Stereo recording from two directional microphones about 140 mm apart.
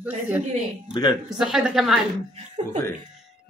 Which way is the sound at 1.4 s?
Centre (ahead or behind).